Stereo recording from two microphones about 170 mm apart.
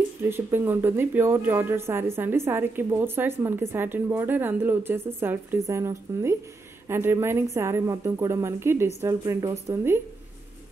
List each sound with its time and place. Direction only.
0.2 s speech: 15° right (ahead or behind)